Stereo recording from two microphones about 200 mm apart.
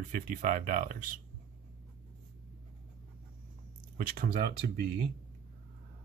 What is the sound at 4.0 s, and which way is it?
Speech, 45° right (ahead or behind).